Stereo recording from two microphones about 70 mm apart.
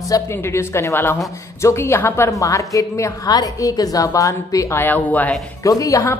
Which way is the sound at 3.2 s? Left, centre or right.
Left.